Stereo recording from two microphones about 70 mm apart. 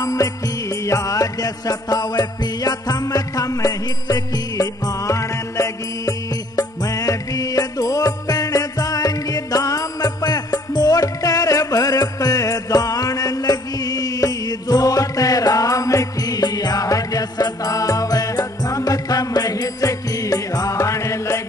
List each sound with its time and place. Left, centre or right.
0.0 s music: left
6.5 s music: left